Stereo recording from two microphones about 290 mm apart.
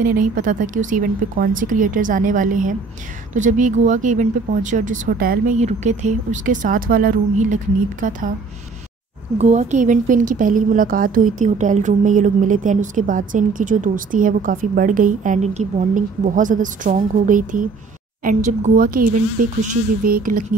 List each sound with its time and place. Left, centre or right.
0.0 s a woman's voice: right
9.4 s a woman's voice: right